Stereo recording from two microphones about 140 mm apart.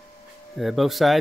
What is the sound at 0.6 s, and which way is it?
Speech, centre (ahead or behind).